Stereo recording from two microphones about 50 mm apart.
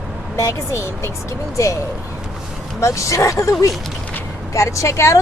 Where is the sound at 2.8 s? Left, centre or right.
Left.